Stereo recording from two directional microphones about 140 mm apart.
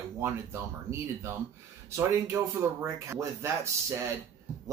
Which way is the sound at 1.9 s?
20° right (ahead or behind).